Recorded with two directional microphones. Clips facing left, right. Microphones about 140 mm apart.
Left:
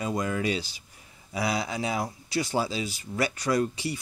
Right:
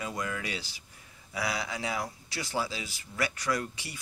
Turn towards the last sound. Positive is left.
turn(degrees=30)  # may be behind; listen again after turning